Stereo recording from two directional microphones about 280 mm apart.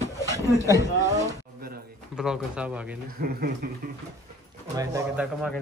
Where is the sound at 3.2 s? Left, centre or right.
Right.